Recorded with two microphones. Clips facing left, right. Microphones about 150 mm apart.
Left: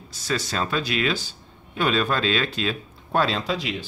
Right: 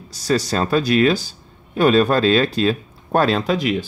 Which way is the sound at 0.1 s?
40° right (ahead or behind).